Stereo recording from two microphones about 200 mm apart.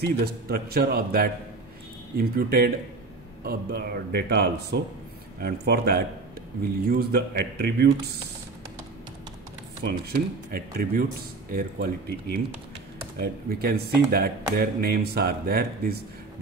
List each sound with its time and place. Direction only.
0.0 s speech: 50° right (ahead or behind)
9.8 s speech: 50° right (ahead or behind)